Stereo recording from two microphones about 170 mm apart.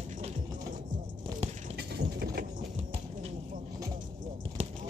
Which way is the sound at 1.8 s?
70° right (ahead or behind).